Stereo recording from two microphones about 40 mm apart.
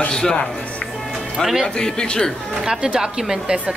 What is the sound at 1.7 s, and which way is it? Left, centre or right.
Speech, centre.